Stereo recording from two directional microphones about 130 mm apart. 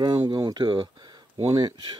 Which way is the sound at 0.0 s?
40° right (ahead or behind).